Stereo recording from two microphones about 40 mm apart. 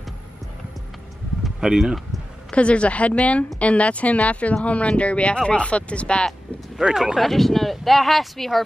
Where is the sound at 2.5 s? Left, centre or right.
Left.